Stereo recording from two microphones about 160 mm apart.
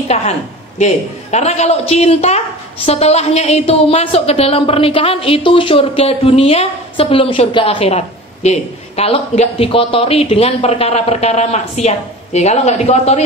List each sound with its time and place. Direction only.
1.3 s a woman's voice: 40° left (ahead or behind)